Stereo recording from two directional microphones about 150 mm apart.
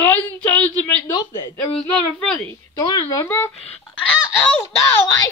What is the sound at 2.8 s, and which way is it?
Speech, 25° left (ahead or behind).